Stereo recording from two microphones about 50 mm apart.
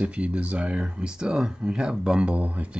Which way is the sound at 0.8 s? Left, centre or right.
Centre.